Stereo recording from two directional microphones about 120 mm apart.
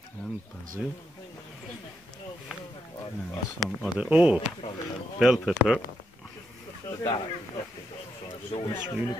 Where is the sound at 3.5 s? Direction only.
Centre (ahead or behind).